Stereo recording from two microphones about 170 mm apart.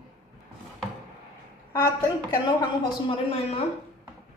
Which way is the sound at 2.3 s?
25° left (ahead or behind).